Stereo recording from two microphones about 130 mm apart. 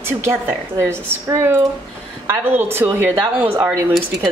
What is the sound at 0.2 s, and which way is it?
A woman's voice, 20° right (ahead or behind).